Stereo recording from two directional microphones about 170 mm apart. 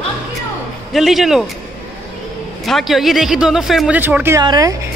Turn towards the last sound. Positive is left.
turn(degrees=-20)  # may be behind; listen again after turning